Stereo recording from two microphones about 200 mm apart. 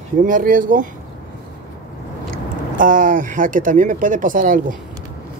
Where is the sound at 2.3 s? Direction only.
40° right (ahead or behind).